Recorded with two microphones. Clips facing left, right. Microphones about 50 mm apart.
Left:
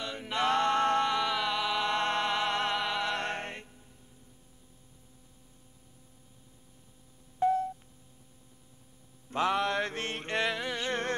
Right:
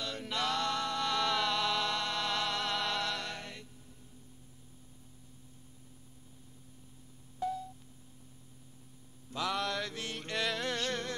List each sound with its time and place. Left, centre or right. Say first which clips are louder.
0.0 s music: left 2 dB; left
0.4 s music: left 7 dB; left
1.0 s music: left 2 dB; centre
1.9 s music: left 5 dB; left
3.2 s music: left 7 dB; left
7.3 s a sound: left 9 dB; left
9.3 s mantra: left 6 dB; left
10.5 s a sound: left 1 dB; centre